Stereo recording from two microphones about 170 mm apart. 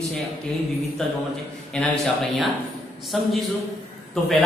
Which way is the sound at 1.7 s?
Centre (ahead or behind).